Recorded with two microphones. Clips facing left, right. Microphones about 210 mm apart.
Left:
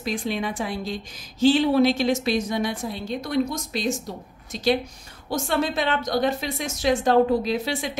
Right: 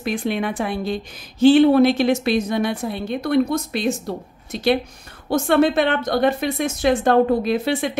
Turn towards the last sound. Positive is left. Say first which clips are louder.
# right 5 dB
turn(degrees=-55)  # may be behind; listen again after turning